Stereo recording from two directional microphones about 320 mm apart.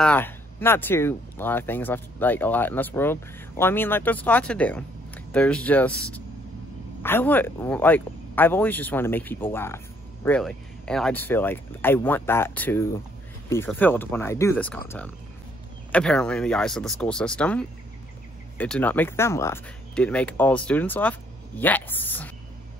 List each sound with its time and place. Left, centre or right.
0.0 s speech: centre
15.9 s speech: centre